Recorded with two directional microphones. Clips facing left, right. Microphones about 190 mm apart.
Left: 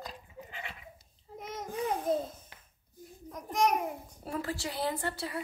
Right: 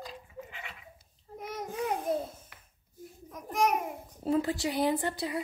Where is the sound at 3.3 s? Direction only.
5° right (ahead or behind).